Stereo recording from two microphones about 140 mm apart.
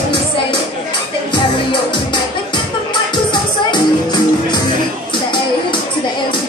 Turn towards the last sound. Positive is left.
turn(degrees=30)  # may be behind; listen again after turning